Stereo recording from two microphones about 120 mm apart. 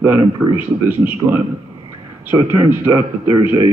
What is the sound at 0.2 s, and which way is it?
Speech, 35° right (ahead or behind).